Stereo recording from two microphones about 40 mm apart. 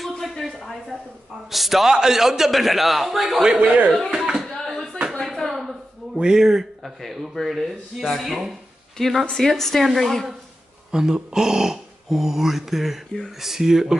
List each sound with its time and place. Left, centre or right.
0.0 s a sound: centre
1.5 s a man's voice: centre
3.5 s speech: right
4.1 s speech: centre
4.6 s a sound: centre
6.1 s a man's voice: centre
8.9 s a woman's voice: centre
10.9 s speech: centre